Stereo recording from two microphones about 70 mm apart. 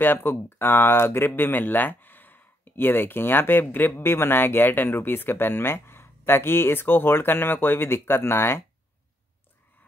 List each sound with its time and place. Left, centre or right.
0.0 s speech: left